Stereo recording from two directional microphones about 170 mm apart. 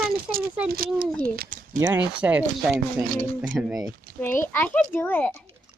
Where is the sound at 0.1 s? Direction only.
60° right (ahead or behind).